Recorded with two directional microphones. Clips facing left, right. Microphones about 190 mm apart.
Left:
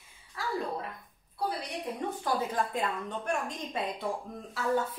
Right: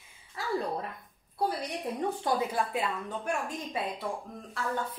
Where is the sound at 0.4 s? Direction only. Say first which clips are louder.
Even; 25° right (ahead or behind).